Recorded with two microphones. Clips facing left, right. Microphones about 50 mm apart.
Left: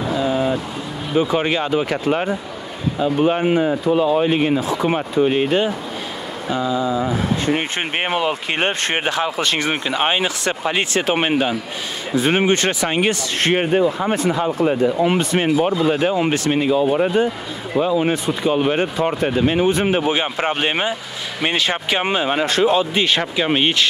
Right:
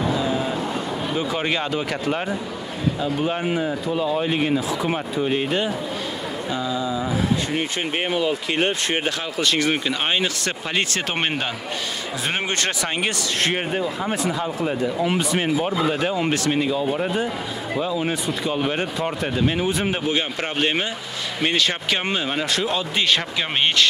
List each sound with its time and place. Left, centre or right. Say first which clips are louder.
1.1 s speech: left 7 dB; left; by 11.5 s centre
12.2 s speech: left 9 dB; left
13.5 s speech: left 7 dB; left
16.0 s speech: left 4 dB; centre
16.9 s speech: left 6 dB; left
17.7 s speech: left 7 dB; left; by 23.9 s centre